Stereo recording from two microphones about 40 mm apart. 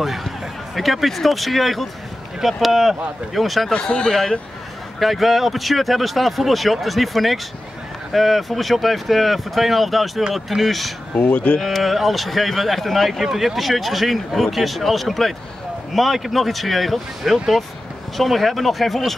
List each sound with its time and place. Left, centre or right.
0.0 s speech: centre
3.7 s speech: left
4.9 s speech: centre
11.1 s speech: left
11.6 s speech: centre